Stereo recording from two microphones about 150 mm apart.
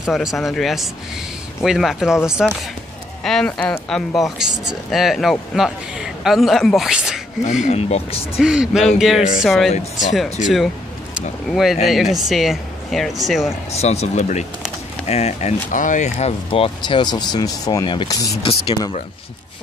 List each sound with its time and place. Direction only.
0.0 s speech: 5° right (ahead or behind)
7.6 s speech: 45° left (ahead or behind)
8.4 s speech: 5° right (ahead or behind)
9.7 s speech: 50° left (ahead or behind)
11.1 s speech: centre (ahead or behind)
13.7 s speech: 45° left (ahead or behind)
16.4 s speech: 35° left (ahead or behind)
18.4 s speech: 40° left (ahead or behind)